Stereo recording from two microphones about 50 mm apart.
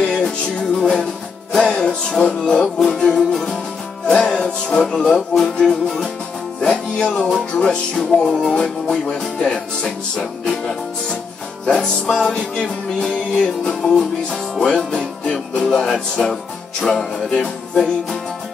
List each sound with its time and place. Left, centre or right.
0.0 s music: centre